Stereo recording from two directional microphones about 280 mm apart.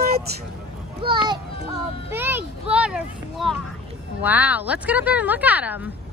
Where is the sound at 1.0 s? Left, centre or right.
Centre.